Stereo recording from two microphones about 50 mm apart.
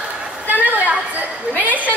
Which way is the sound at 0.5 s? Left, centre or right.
Right.